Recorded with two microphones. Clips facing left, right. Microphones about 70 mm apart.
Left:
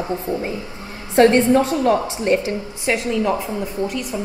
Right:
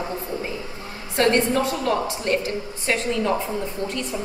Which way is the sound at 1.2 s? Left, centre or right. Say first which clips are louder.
Left 6 dB; left.